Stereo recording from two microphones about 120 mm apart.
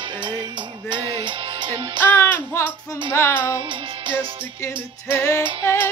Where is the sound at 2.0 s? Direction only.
15° left (ahead or behind).